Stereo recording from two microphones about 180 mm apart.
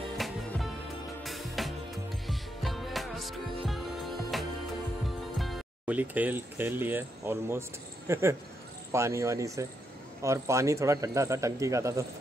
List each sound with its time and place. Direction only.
0.2 s music: centre (ahead or behind)
5.4 s speech: 5° right (ahead or behind)